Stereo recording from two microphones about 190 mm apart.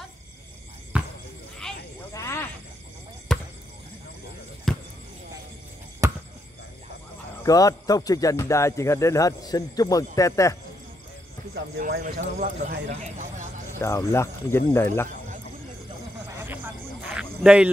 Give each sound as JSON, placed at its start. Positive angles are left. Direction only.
{"t": 0.9, "sound": "basketball bounce", "side_deg": -5}
{"t": 2.1, "sound": "wild animals", "side_deg": 15}
{"t": 3.3, "sound": "basketball bounce", "side_deg": 0}
{"t": 4.7, "sound": "basketball bounce", "side_deg": 0}
{"t": 6.0, "sound": "a sound", "side_deg": -15}
{"t": 7.4, "sound": "a man's voice", "side_deg": 20}
{"t": 11.5, "sound": "speech", "side_deg": -50}
{"t": 13.0, "sound": "a sound", "side_deg": -40}
{"t": 13.7, "sound": "a man's voice", "side_deg": 15}
{"t": 16.3, "sound": "a sound", "side_deg": -10}